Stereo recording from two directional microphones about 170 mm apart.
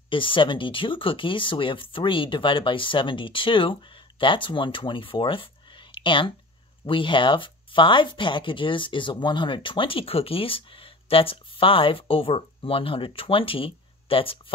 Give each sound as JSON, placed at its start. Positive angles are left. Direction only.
{"t": 0.1, "sound": "speech", "side_deg": 30}